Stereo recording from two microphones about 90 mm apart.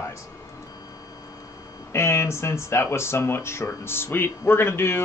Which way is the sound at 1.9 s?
30° left (ahead or behind).